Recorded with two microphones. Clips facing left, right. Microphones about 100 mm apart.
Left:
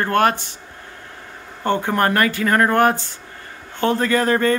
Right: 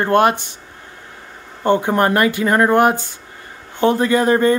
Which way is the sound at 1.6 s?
20° right (ahead or behind).